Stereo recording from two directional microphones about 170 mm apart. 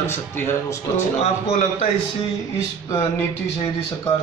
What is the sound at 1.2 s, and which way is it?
Speech, 45° left (ahead or behind).